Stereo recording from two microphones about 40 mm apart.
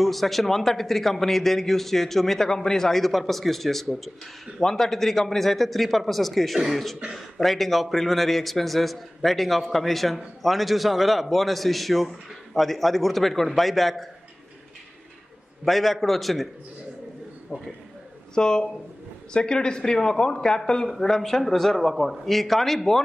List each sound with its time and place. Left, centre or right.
0.0 s a man's voice: centre
15.6 s a man's voice: centre
17.5 s a man's voice: centre
18.3 s a man's voice: centre